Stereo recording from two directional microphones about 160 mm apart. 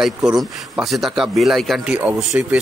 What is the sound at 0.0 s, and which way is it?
Speech, centre (ahead or behind).